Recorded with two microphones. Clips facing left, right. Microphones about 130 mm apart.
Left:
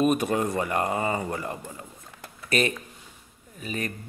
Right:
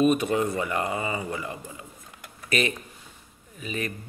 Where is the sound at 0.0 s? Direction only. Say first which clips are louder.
Right 1 dB; 45° left (ahead or behind).